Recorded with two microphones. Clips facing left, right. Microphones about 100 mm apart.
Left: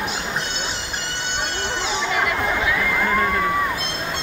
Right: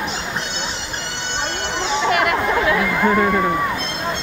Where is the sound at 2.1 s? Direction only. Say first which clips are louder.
Right 5 dB; 70° right (ahead or behind).